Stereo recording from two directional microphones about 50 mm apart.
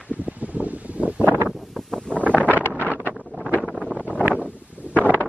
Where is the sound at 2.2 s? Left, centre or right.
Right.